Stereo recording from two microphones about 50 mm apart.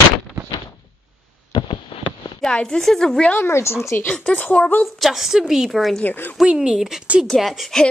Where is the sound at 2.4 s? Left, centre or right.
Centre.